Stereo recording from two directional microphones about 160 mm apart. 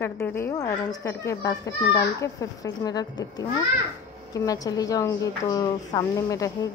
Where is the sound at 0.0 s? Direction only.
15° left (ahead or behind).